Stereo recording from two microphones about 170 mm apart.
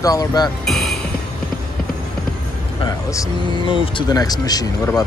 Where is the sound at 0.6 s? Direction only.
Centre (ahead or behind).